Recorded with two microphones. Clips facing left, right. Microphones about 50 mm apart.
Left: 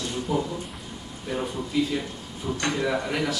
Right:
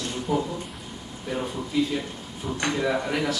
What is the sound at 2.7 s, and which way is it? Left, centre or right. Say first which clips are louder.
Speech: right 2 dB; centre.